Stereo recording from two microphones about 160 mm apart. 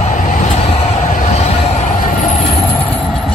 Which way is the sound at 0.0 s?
50° left (ahead or behind).